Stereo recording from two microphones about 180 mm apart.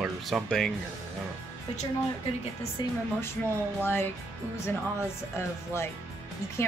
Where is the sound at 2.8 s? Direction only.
25° left (ahead or behind).